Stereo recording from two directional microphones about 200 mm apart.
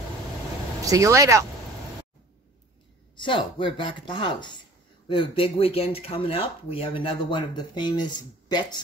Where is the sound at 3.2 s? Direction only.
25° left (ahead or behind).